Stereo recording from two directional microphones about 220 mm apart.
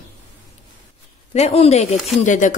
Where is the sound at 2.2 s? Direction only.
35° left (ahead or behind).